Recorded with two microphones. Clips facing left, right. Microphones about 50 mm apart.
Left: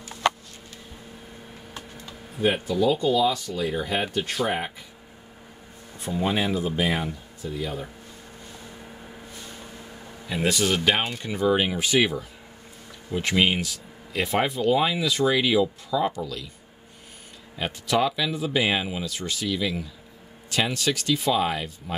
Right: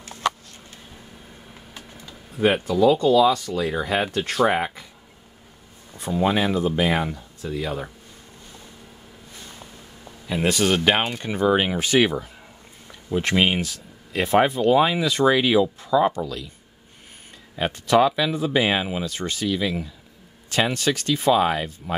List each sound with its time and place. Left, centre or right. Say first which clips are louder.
2.4 s speech: right 4 dB; right
4.6 s speech: right 5 dB; right
6.1 s speech: right 4 dB; right
10.5 s speech: right 3 dB; right
17.6 s speech: right 5 dB; right